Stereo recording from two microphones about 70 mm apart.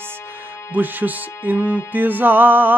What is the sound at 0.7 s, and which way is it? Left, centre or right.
Music, right.